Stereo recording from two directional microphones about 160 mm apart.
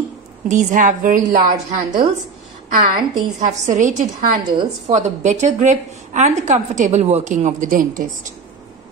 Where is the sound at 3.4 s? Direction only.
50° right (ahead or behind).